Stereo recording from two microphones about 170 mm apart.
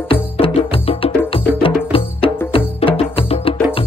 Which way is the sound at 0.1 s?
35° left (ahead or behind).